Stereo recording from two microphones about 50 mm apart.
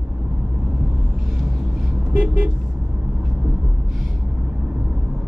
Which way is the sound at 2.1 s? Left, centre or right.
Right.